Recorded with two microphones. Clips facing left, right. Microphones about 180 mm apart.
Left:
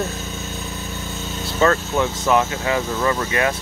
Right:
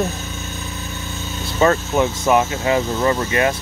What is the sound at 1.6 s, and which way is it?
Speech, 20° right (ahead or behind).